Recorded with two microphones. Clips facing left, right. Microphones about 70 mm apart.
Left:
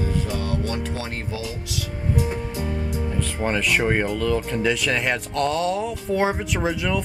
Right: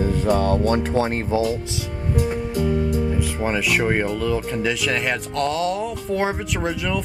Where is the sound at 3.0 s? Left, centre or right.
Centre.